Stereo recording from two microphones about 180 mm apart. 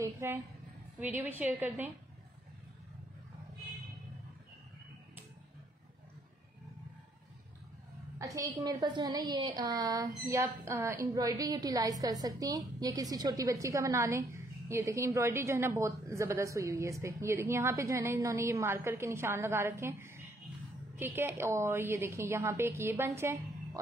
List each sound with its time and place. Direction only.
0.0 s a sound: 15° right (ahead or behind)
0.9 s a woman's voice: 10° right (ahead or behind)
8.2 s a woman's voice: 15° right (ahead or behind)